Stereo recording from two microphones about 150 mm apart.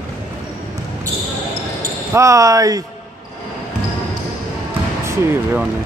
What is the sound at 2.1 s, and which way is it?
Speech, 20° right (ahead or behind).